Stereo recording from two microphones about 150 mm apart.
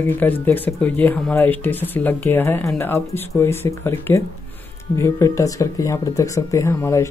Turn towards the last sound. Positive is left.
turn(degrees=15)  # may be behind; listen again after turning